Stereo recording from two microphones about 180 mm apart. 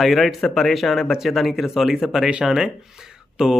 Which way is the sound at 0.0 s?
Centre (ahead or behind).